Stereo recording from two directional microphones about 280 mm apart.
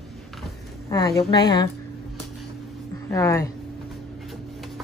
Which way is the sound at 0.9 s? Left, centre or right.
Centre.